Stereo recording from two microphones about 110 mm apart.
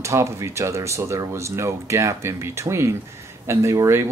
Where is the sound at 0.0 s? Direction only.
25° right (ahead or behind).